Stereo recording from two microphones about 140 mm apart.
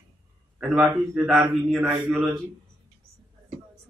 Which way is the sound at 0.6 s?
5° right (ahead or behind).